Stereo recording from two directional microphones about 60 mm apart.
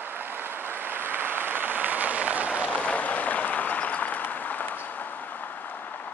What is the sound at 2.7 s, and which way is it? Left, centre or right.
Applause, left.